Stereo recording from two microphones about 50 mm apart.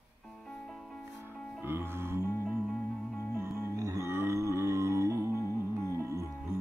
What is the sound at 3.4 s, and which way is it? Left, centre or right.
Music, right.